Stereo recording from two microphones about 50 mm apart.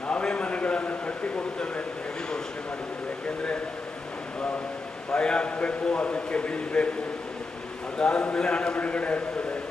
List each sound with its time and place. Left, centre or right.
0.1 s a sound: left
5.1 s a man's voice: centre
8.0 s a man's voice: centre